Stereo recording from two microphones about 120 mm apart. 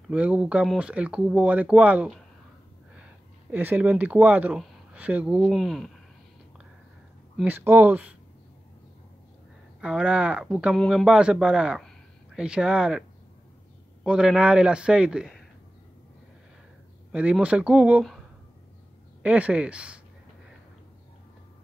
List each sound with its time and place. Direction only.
0.1 s speech: 10° right (ahead or behind)
3.5 s speech: 15° right (ahead or behind)
7.4 s speech: 20° right (ahead or behind)
9.8 s speech: 5° right (ahead or behind)
11.1 s speech: 5° right (ahead or behind)
14.0 s speech: 5° right (ahead or behind)
17.1 s speech: 10° right (ahead or behind)
19.2 s speech: 10° right (ahead or behind)